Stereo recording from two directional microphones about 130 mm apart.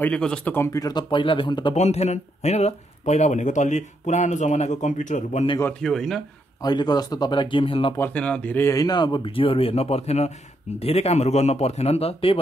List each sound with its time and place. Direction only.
0.0 s speech: 10° left (ahead or behind)
0.7 s speech: 30° left (ahead or behind)
1.8 s speech: 60° left (ahead or behind)
5.8 s speech: 5° left (ahead or behind)
6.6 s speech: 35° left (ahead or behind)
8.1 s speech: 10° left (ahead or behind)
8.6 s speech: 30° left (ahead or behind); by 12.4 s 50° left (ahead or behind)